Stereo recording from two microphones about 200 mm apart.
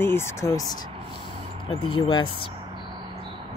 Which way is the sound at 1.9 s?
25° left (ahead or behind).